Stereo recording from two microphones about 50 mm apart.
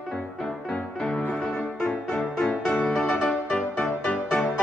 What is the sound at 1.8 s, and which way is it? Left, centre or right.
Music, left.